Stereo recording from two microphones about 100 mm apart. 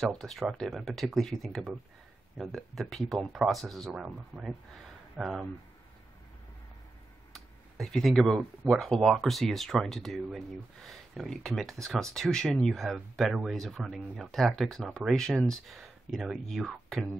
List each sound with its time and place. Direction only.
0.0 s speech: 5° left (ahead or behind)
3.9 s speech: 10° right (ahead or behind)
7.3 s a sound: centre (ahead or behind)
8.7 s speech: centre (ahead or behind)